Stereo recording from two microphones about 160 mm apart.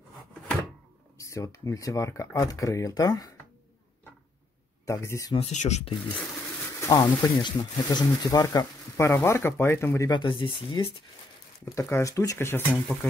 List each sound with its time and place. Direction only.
1.1 s speech: 20° left (ahead or behind)
4.8 s speech: 20° left (ahead or behind)
5.3 s speech: 45° left (ahead or behind)
6.8 s speech: 20° left (ahead or behind)
11.6 s speech: 20° left (ahead or behind)